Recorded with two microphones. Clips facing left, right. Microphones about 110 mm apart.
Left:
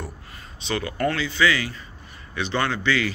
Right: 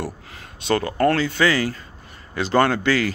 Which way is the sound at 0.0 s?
90° right.